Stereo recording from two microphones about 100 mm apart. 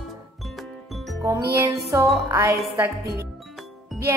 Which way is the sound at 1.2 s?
35° right (ahead or behind).